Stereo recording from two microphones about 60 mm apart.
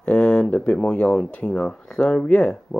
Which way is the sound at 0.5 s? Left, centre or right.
Left.